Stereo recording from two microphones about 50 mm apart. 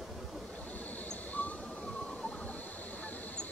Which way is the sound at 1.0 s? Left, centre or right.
Left.